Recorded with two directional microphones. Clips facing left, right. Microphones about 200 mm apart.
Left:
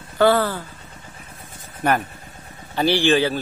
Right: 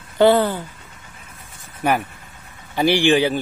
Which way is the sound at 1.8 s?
10° right (ahead or behind).